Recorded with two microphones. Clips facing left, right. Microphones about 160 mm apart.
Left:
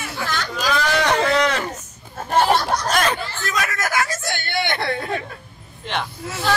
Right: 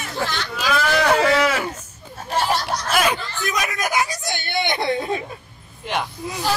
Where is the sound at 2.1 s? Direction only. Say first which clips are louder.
Left 4 dB; 55° left (ahead or behind).